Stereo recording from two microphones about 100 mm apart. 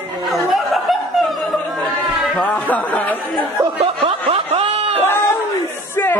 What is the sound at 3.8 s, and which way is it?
Snicker, 70° right (ahead or behind).